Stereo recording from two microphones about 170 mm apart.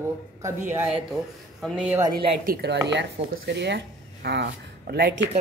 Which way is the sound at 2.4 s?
65° right (ahead or behind).